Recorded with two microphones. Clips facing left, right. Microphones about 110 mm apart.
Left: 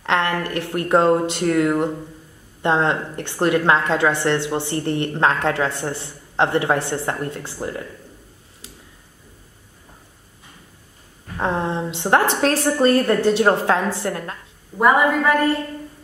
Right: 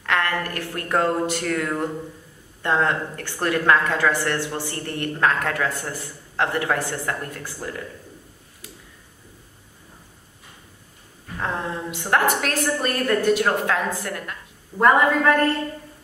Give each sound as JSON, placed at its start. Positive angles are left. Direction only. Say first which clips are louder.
{"t": 0.0, "sound": "a woman's voice", "louder": "left 3 dB", "side_deg": 25}
{"t": 11.3, "sound": "a woman's voice", "louder": "left 5 dB", "side_deg": 25}
{"t": 14.8, "sound": "a woman's voice", "louder": "left 1 dB", "side_deg": 5}